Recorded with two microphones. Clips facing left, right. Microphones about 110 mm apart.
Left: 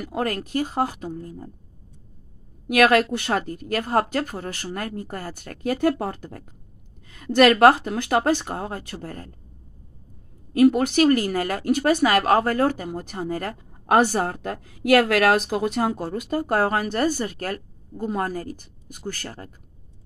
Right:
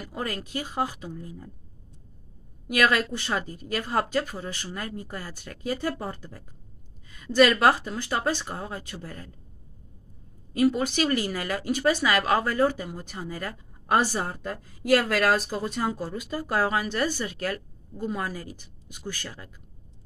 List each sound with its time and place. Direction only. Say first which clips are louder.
0.0 s speech: left 7 dB; 55° left (ahead or behind)
2.7 s speech: left 6 dB; 55° left (ahead or behind)
10.5 s speech: left 6 dB; 55° left (ahead or behind)